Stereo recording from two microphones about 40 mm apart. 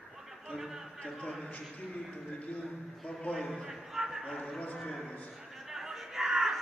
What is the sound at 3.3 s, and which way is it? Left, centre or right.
Speech, centre.